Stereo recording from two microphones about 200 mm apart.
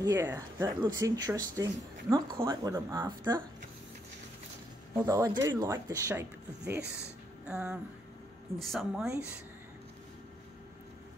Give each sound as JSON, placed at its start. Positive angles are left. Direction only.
{"t": 0.0, "sound": "speech", "side_deg": -15}
{"t": 4.9, "sound": "speech", "side_deg": -15}